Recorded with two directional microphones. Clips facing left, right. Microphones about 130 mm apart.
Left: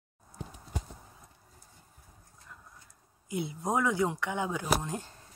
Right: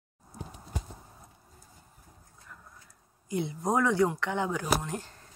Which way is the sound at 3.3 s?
15° left (ahead or behind).